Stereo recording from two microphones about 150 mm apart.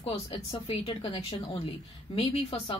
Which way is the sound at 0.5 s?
40° left (ahead or behind).